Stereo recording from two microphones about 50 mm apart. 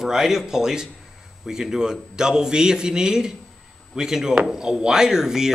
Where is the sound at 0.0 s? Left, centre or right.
Centre.